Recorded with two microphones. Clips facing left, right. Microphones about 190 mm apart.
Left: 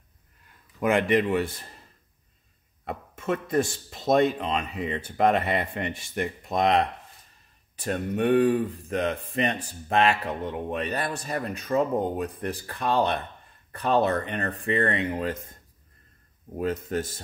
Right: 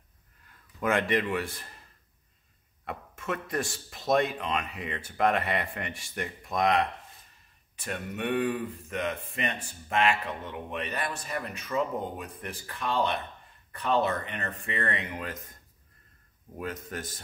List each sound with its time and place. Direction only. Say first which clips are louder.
0.7 s speech: left 5 dB; 20° left (ahead or behind)
2.8 s speech: left 4 dB; 25° left (ahead or behind)
16.5 s speech: left 9 dB; 30° left (ahead or behind)